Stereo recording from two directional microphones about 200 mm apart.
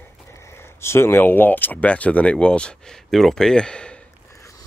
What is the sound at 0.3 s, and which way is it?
Speech, 15° left (ahead or behind).